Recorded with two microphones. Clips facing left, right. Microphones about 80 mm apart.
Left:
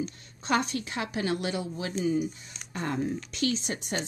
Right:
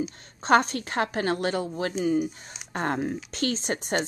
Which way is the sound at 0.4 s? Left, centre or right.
Right.